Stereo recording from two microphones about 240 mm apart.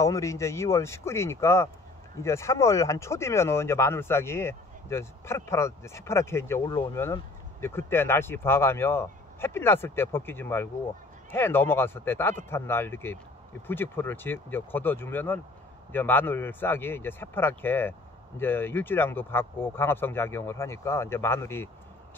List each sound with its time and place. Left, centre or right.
0.0 s speech: centre